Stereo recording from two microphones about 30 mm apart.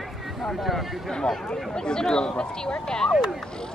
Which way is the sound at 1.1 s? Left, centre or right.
Left.